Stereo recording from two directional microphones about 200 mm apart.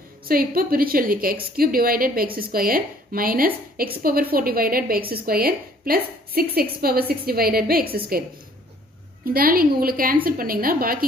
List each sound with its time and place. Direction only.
0.2 s a woman's voice: 45° right (ahead or behind)
9.2 s a woman's voice: 45° right (ahead or behind)